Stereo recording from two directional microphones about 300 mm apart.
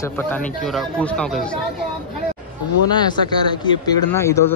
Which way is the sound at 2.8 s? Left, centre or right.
Centre.